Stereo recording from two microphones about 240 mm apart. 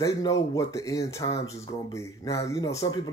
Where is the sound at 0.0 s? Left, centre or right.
Centre.